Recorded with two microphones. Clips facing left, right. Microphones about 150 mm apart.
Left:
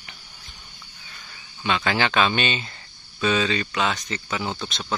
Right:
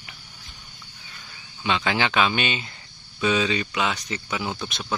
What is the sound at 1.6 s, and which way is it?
Speech, 15° right (ahead or behind).